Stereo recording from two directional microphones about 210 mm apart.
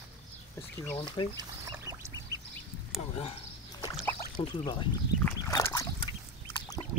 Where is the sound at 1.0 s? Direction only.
25° left (ahead or behind).